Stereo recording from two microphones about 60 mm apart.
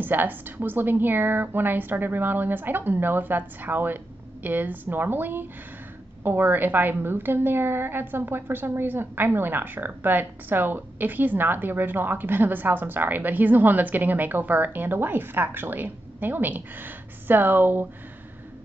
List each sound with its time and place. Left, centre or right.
0.0 s a woman's voice: right